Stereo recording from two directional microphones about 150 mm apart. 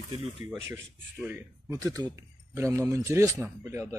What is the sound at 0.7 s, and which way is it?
Speech, 15° right (ahead or behind).